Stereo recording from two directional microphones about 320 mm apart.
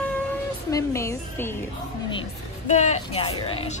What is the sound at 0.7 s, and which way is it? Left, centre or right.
Speech, centre.